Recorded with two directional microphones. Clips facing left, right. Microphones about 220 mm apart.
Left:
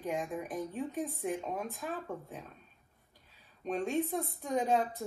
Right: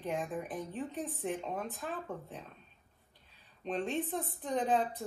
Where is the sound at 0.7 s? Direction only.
10° left (ahead or behind).